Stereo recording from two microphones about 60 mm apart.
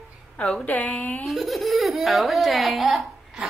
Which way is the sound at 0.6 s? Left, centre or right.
Left.